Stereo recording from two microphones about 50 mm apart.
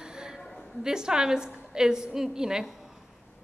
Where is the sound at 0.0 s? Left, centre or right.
Centre.